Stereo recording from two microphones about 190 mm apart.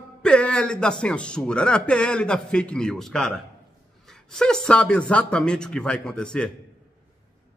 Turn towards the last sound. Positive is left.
turn(degrees=5)  # may be behind; listen again after turning